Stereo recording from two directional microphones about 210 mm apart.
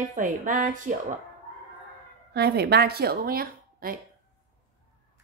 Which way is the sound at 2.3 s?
50° right (ahead or behind).